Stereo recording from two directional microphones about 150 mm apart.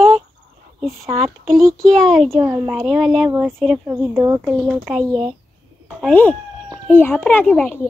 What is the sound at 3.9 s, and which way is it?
Speech, 20° right (ahead or behind).